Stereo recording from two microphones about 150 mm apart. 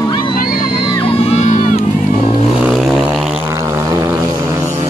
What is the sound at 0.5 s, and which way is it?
Music, 30° left (ahead or behind).